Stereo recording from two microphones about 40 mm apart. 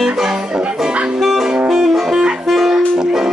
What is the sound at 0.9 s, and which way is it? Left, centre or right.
Music, right.